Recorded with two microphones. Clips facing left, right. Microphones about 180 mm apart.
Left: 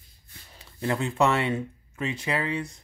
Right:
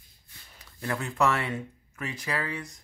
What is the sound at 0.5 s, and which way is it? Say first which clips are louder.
Speech: left 5 dB; 25° left (ahead or behind).